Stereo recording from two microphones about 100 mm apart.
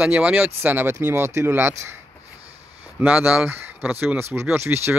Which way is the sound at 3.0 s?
15° right (ahead or behind).